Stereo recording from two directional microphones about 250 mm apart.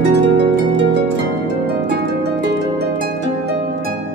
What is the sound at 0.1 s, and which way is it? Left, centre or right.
Harp, right.